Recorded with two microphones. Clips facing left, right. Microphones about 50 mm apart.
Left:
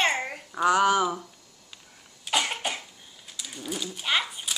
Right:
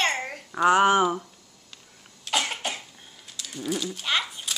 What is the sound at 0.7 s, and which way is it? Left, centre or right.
Speech, right.